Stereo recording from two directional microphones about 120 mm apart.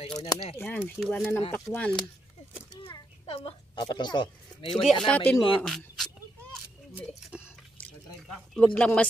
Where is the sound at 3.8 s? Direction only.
35° left (ahead or behind).